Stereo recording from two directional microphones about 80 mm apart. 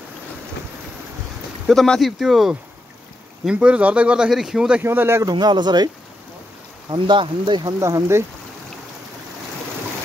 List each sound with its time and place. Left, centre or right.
1.7 s speech: centre
3.4 s speech: centre
4.8 s speech: right
5.3 s speech: right
6.9 s speech: right
7.8 s speech: right